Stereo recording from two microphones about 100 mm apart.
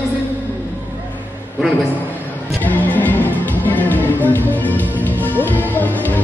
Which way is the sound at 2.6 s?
15° left (ahead or behind).